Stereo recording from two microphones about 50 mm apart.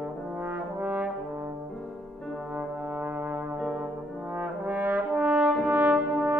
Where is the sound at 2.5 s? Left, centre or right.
Right.